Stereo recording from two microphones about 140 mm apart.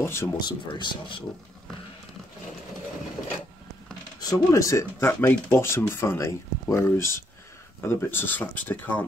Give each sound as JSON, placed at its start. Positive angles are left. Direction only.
{"t": 0.0, "sound": "speech", "side_deg": 20}
{"t": 0.5, "sound": "speech", "side_deg": 35}
{"t": 4.2, "sound": "speech", "side_deg": 25}